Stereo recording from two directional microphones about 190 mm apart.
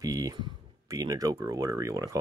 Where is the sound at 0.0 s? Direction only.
20° right (ahead or behind).